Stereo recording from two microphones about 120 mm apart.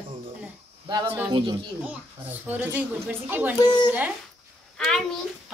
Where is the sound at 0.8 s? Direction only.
40° right (ahead or behind).